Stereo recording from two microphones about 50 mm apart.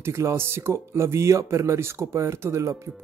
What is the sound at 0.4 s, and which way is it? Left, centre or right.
Speech, right.